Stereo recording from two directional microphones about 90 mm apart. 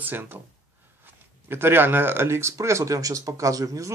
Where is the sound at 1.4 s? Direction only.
25° right (ahead or behind).